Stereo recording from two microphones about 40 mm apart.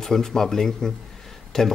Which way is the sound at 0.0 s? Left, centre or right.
Centre.